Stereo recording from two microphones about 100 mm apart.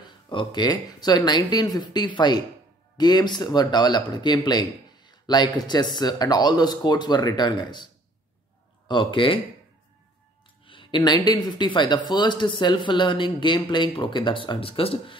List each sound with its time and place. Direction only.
0.3 s speech: 50° left (ahead or behind)
10.6 s a sound: 60° left (ahead or behind)
11.0 s speech: 45° left (ahead or behind); by 15.1 s 65° left (ahead or behind)